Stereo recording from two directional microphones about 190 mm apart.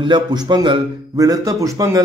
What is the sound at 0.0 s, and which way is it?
A man's voice, 25° right (ahead or behind).